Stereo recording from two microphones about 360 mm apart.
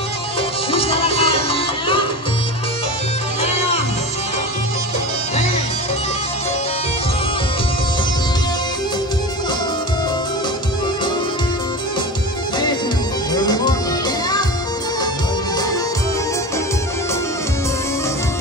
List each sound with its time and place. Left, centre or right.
0.7 s music: centre
13.3 s music: centre